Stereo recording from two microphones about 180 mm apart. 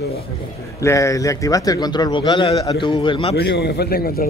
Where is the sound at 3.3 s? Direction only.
65° left (ahead or behind).